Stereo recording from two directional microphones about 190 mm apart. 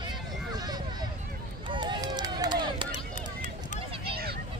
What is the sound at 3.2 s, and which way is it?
Run, 40° left (ahead or behind).